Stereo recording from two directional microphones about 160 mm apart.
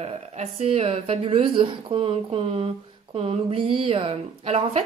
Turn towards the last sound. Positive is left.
turn(degrees=-40)  # may be behind; listen again after turning